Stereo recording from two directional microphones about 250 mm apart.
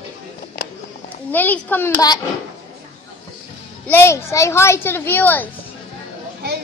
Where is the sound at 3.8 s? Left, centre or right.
Centre.